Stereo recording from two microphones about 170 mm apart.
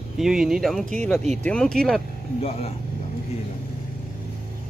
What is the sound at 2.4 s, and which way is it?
Speech, 35° left (ahead or behind).